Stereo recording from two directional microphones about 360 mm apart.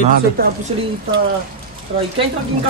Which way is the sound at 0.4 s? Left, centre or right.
Right.